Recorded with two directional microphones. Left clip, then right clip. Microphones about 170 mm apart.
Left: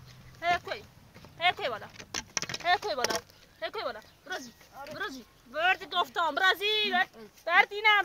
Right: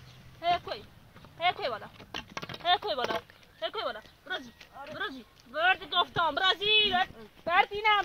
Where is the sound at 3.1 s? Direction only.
15° left (ahead or behind).